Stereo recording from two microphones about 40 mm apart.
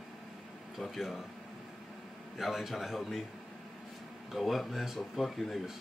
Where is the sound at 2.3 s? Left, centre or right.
Centre.